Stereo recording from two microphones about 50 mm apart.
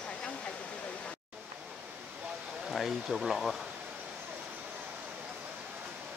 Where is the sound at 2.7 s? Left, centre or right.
Centre.